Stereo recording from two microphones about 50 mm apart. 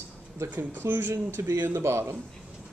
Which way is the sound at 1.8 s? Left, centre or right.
Right.